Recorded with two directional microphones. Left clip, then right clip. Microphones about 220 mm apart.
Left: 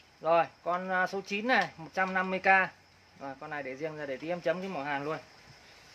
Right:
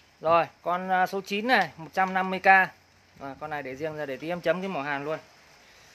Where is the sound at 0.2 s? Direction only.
35° right (ahead or behind).